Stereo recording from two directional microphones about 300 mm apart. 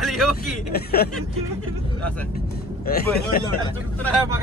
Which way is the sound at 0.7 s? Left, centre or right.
Left.